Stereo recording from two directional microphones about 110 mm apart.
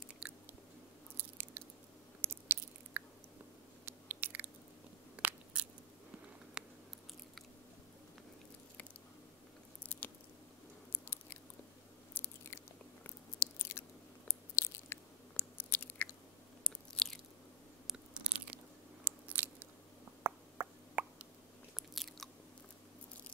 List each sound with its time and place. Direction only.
1.1 s biting: 15° right (ahead or behind)
9.8 s biting: 15° left (ahead or behind)
12.1 s biting: 20° left (ahead or behind); by 17.2 s 5° left (ahead or behind)
17.8 s biting: 5° right (ahead or behind)
20.2 s plop: 20° right (ahead or behind)
21.7 s biting: centre (ahead or behind)